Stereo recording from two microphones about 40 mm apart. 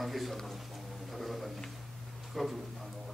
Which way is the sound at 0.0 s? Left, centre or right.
Centre.